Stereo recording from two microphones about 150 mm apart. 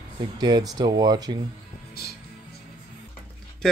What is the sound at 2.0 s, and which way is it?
Music, 90° left.